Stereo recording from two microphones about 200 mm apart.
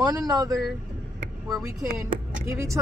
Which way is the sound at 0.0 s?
15° right (ahead or behind).